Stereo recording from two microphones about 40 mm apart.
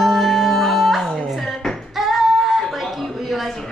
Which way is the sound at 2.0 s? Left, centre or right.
Centre.